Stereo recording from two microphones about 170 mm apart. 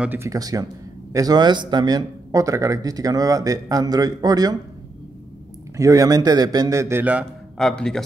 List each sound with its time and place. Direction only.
0.0 s speech: 15° right (ahead or behind)
5.8 s speech: 20° right (ahead or behind)
7.5 s speech: 5° left (ahead or behind)